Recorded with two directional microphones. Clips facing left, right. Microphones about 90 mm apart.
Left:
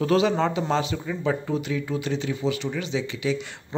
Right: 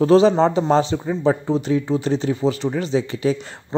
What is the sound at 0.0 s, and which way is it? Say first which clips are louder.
Speech: right 8 dB; 30° right (ahead or behind).